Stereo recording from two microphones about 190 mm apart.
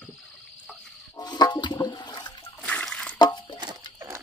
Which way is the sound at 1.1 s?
20° left (ahead or behind).